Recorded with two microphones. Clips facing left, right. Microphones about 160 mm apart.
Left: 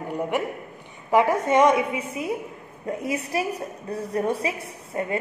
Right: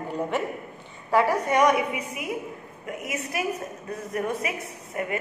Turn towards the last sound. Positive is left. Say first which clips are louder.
# left 2 dB
turn(degrees=30)  # may be behind; listen again after turning